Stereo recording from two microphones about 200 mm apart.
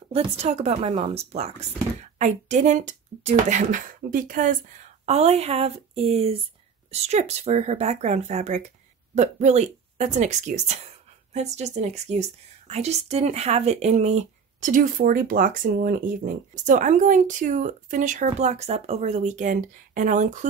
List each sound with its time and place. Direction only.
0.1 s speech: 30° right (ahead or behind)